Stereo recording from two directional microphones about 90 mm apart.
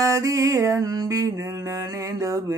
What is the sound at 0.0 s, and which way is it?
Music, 40° right (ahead or behind).